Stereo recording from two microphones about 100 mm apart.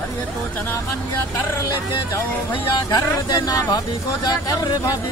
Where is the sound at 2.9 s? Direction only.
40° left (ahead or behind).